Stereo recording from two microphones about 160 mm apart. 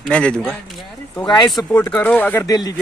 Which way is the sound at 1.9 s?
10° left (ahead or behind).